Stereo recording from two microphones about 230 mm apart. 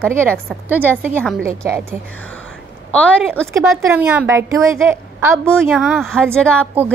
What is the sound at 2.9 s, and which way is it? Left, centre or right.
Speech, centre.